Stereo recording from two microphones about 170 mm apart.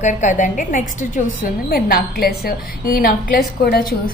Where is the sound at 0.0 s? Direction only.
45° left (ahead or behind).